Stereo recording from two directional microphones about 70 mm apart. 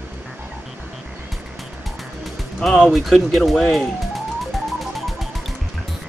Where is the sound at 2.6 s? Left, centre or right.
Centre.